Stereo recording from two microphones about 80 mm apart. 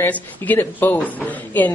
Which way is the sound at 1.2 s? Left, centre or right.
Left.